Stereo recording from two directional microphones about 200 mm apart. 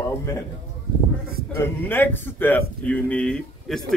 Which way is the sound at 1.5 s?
10° left (ahead or behind).